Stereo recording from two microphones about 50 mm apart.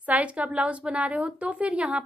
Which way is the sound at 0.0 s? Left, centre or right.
Right.